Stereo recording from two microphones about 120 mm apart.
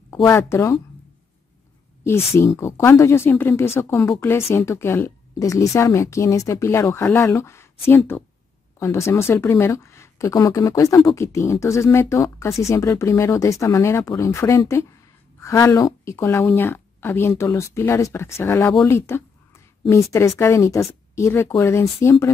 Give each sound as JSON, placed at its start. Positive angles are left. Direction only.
{"t": 0.1, "sound": "speech", "side_deg": 20}
{"t": 2.0, "sound": "speech", "side_deg": 20}